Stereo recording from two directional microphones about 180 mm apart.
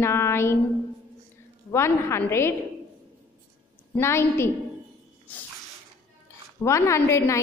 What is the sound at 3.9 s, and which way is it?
Speech, 15° left (ahead or behind).